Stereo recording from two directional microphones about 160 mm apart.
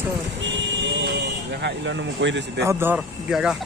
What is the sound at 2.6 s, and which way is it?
Speech, 15° right (ahead or behind).